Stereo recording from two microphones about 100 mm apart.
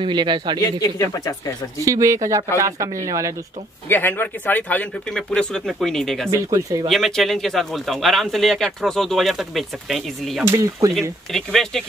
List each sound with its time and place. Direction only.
0.0 s speech: 50° right (ahead or behind)
0.6 s speech: 35° left (ahead or behind)
1.8 s speech: 30° right (ahead or behind)
3.9 s speech: 20° left (ahead or behind)
5.1 s speech: 5° left (ahead or behind)
6.3 s speech: 30° right (ahead or behind)
6.9 s speech: centre (ahead or behind)
10.4 s speech: 30° right (ahead or behind)
11.0 s speech: 5° left (ahead or behind)